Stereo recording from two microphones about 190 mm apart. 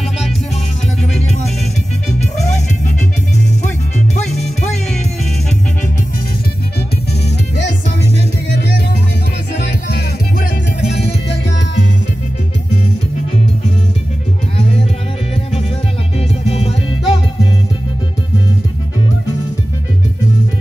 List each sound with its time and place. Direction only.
7.5 s music: 65° left (ahead or behind)
16.2 s music: 35° left (ahead or behind)